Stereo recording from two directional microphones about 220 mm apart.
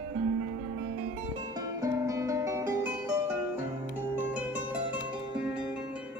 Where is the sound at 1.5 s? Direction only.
15° right (ahead or behind).